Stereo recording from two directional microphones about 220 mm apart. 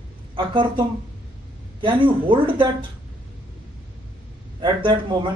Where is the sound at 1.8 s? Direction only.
20° right (ahead or behind).